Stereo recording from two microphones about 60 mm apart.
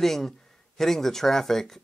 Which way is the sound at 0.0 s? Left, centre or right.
Centre.